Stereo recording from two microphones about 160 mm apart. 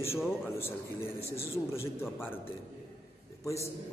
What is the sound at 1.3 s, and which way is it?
Speech, 15° left (ahead or behind).